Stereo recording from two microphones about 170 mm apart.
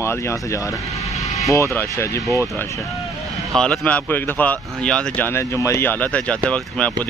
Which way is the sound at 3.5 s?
5° left (ahead or behind).